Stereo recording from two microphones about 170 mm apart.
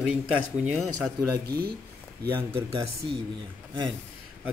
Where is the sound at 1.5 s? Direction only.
65° right (ahead or behind).